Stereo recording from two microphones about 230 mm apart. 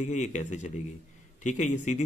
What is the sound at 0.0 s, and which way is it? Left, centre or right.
A man's voice, left.